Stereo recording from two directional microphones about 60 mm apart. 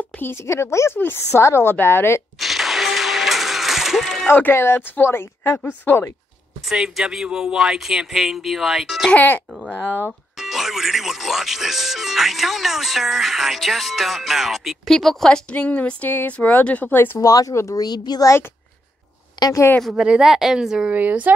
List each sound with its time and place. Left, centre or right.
0.2 s a woman's voice: left
0.9 s speech: left
1.3 s a woman's voice: left
2.4 s music: centre
4.5 s a woman's voice: left
5.6 s a woman's voice: left
6.7 s speech: centre
9.1 s a woman's voice: left
10.4 s speech: centre
14.9 s speech: centre
15.2 s a woman's voice: centre; by 17.2 s left
17.2 s speech: left
19.9 s speech: centre
20.9 s a woman's voice: right